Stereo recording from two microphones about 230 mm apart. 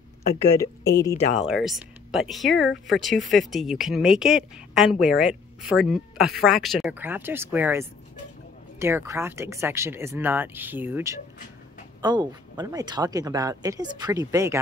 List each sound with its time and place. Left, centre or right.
0.6 s speech: centre
1.5 s speech: centre